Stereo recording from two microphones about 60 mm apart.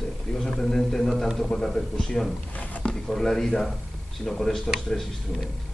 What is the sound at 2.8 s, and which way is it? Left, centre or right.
A man's voice, centre.